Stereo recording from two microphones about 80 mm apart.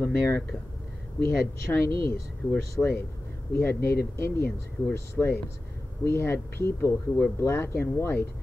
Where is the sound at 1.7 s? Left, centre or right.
Left.